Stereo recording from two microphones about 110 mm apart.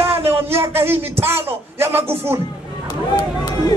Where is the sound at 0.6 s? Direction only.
20° right (ahead or behind).